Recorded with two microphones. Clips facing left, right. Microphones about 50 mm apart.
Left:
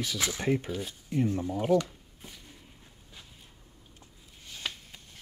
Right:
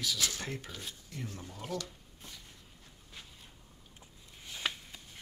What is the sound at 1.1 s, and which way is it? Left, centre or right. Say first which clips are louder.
Speech: left 18 dB; left.